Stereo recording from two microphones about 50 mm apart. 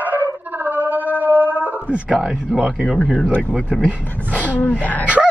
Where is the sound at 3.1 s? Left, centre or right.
Left.